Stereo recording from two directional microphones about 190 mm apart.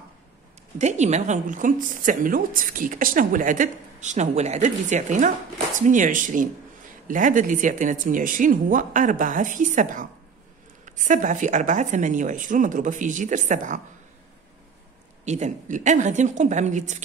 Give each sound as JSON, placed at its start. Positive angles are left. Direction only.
{"t": 0.7, "sound": "a woman's voice", "side_deg": -35}
{"t": 15.2, "sound": "speech", "side_deg": -40}